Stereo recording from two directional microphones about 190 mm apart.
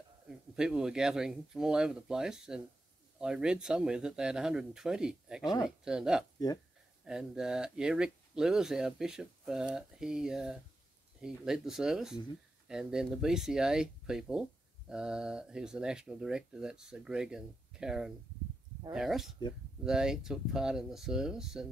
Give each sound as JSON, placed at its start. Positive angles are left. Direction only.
{"t": 0.3, "sound": "speech", "side_deg": -5}